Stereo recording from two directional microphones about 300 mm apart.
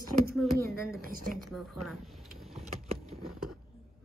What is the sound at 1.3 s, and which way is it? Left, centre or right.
Speech, centre.